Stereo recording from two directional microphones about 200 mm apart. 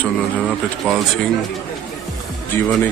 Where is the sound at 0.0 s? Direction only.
Centre (ahead or behind).